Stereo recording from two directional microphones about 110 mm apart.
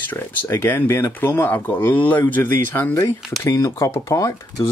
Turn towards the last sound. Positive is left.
turn(degrees=30)  # may be behind; listen again after turning